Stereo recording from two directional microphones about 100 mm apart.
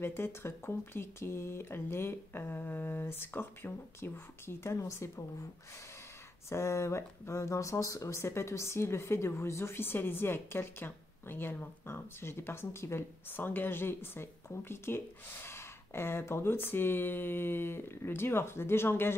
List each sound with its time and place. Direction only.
0.0 s speech: 25° left (ahead or behind)
6.5 s speech: 30° left (ahead or behind)